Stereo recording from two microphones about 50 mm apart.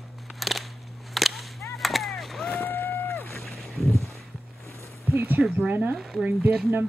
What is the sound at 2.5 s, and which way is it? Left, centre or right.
Boat, left.